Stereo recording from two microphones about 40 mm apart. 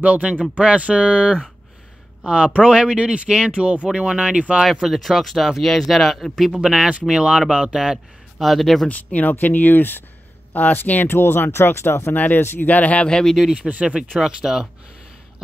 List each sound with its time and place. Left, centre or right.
0.0 s speech: right
4.8 s speech: centre
6.6 s speech: centre
8.4 s speech: centre
8.8 s speech: left
9.3 s speech: left
11.1 s speech: left
12.6 s speech: left
13.1 s speech: centre
13.6 s speech: right
14.2 s speech: centre